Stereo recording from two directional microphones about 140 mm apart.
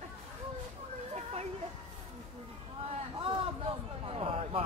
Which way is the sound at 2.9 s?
40° right (ahead or behind).